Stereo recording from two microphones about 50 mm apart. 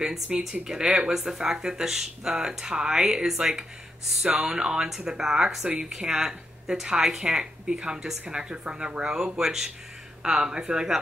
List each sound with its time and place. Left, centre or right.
0.4 s speech: centre
4.8 s speech: centre